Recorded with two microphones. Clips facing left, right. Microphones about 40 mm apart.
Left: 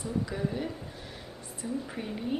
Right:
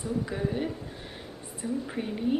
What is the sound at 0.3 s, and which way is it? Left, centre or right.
Speech, centre.